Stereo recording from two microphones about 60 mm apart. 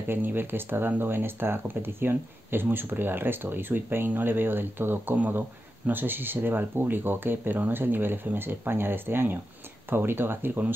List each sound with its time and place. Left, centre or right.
0.1 s speech: right